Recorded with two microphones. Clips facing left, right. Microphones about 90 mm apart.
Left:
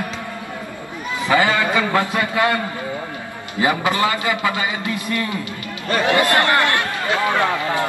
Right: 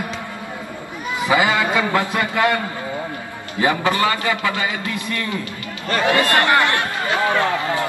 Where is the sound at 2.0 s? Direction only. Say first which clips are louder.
Even; 15° left (ahead or behind).